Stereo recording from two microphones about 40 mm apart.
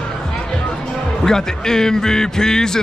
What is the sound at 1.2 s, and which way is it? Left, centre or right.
Speech, centre.